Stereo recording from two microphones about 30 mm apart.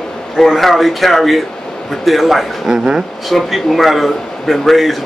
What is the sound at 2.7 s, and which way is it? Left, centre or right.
Speech, right.